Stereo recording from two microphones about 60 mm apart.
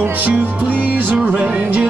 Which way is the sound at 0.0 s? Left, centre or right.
Right.